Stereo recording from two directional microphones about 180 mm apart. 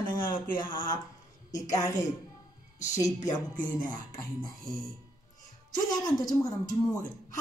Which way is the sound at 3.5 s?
45° left (ahead or behind).